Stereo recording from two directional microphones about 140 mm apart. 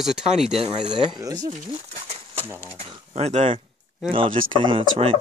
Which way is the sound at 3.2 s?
50° right (ahead or behind).